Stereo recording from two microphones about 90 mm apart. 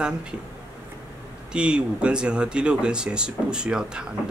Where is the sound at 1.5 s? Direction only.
10° right (ahead or behind).